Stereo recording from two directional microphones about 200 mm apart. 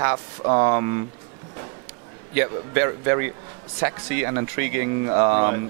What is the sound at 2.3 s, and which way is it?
Speech, 10° right (ahead or behind).